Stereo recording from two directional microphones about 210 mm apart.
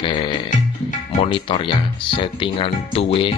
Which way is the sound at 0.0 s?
25° left (ahead or behind).